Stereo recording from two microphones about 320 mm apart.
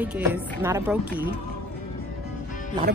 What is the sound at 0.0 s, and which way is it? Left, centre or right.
A woman's voice, centre.